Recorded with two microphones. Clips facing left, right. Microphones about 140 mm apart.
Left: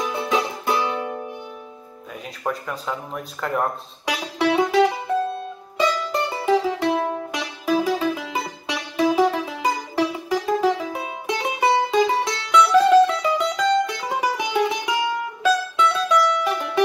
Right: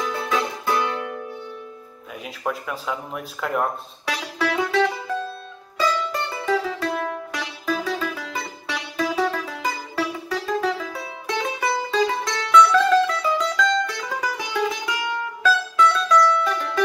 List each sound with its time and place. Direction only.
0.0 s music: 20° left (ahead or behind)
2.4 s speech: centre (ahead or behind)
4.0 s music: 20° left (ahead or behind)
6.3 s music: 25° left (ahead or behind)
11.2 s music: 15° left (ahead or behind)